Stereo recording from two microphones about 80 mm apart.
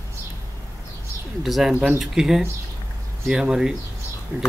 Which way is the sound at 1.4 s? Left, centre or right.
Centre.